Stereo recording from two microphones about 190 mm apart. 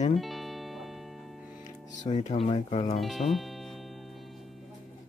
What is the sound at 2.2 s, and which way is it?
Speech, 35° left (ahead or behind).